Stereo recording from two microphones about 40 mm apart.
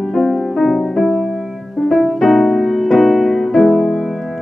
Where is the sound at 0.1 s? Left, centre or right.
Centre.